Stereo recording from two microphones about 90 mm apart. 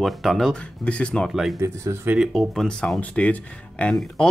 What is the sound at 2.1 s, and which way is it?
Speech, 5° right (ahead or behind).